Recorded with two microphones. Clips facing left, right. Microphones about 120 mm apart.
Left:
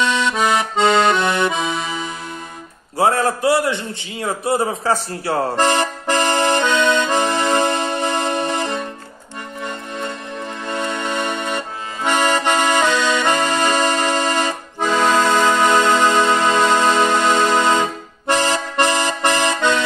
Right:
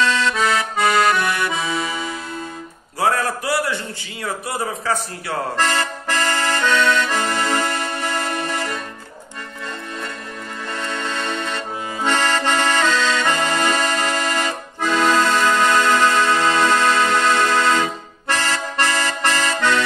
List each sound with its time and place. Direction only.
0.0 s accordion: 20° left (ahead or behind)
3.0 s a man's voice: 25° left (ahead or behind)
5.6 s accordion: 20° left (ahead or behind)
10.7 s accordion: 20° left (ahead or behind)